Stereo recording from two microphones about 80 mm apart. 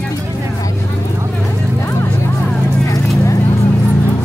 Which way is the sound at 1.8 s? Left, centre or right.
Left.